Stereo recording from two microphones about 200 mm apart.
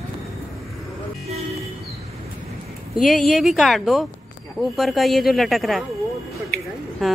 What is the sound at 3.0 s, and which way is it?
Speech, centre (ahead or behind).